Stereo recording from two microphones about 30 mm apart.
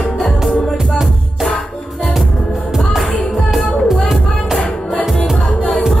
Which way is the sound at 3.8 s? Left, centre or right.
Centre.